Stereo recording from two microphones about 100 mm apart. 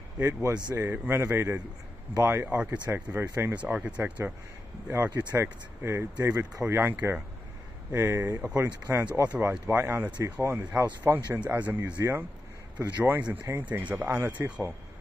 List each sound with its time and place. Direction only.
0.2 s speech: 25° right (ahead or behind)